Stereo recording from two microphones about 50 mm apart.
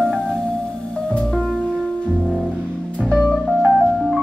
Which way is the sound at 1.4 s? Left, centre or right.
Centre.